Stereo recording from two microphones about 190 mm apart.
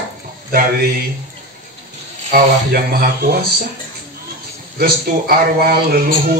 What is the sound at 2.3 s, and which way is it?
Speech, 50° right (ahead or behind).